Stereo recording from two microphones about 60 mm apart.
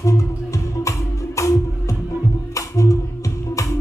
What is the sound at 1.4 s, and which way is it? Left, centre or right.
Music, left.